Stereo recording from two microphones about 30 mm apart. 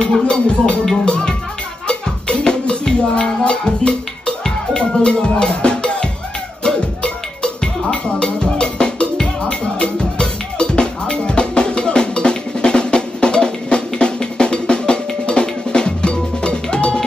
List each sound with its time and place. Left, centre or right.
0.2 s music: left
4.7 s speech: left
5.6 s music: left